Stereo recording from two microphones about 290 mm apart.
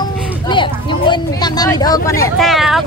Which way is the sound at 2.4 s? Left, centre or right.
Centre.